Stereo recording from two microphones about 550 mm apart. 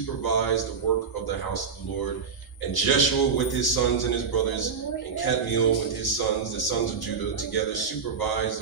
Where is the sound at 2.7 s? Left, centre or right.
Left.